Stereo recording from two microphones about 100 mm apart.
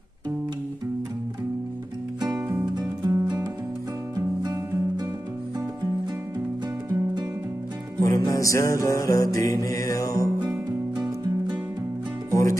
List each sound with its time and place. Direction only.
2.7 s music: 40° right (ahead or behind)
8.0 s music: 35° left (ahead or behind)
12.3 s music: 30° left (ahead or behind)